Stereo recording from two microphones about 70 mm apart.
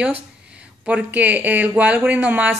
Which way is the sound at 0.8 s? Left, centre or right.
Right.